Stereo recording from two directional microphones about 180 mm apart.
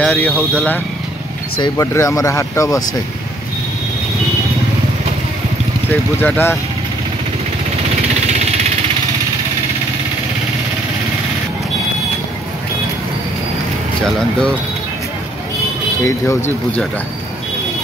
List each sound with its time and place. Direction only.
0.0 s speech: 5° left (ahead or behind)
1.6 s speech: 15° left (ahead or behind)
6.2 s speech: 10° left (ahead or behind)
16.0 s speech: 15° left (ahead or behind)